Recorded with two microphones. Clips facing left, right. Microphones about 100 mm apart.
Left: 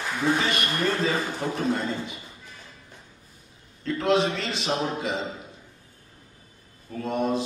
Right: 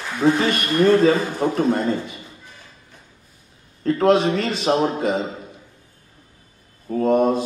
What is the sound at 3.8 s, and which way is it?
A man's voice, 45° right (ahead or behind).